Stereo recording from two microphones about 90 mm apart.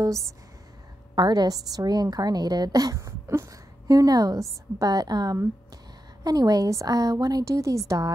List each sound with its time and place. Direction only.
0.0 s a woman's voice: 35° right (ahead or behind)
1.1 s a woman's voice: 50° right (ahead or behind); by 8.1 s 35° right (ahead or behind)